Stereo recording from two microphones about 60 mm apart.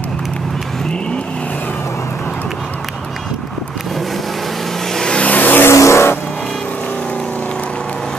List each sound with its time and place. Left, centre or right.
4.9 s vehicle: centre; by 5.7 s left
5.7 s vehicle: left